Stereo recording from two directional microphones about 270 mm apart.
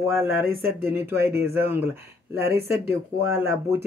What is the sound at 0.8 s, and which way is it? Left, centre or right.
Speech, centre.